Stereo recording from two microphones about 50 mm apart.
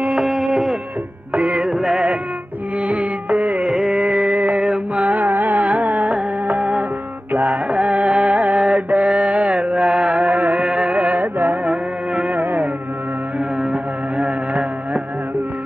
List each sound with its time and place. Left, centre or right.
0.2 s music: centre
1.3 s music: right
1.7 s music: centre
2.9 s music: right
3.7 s music: centre
4.4 s mantra: right
4.6 s carnatic music: right
6.4 s music: right
11.7 s music: right
12.4 s music: right
13.6 s music: centre